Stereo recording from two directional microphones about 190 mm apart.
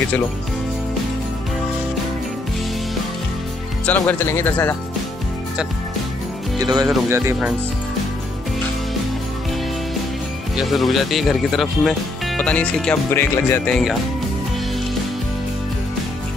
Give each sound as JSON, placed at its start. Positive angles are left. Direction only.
{"t": 3.8, "sound": "speech", "side_deg": 10}
{"t": 6.6, "sound": "speech", "side_deg": -20}
{"t": 10.5, "sound": "speech", "side_deg": 0}